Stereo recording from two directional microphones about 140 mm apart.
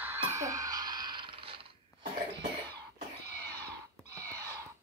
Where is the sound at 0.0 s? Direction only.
15° right (ahead or behind); by 1.7 s 40° right (ahead or behind).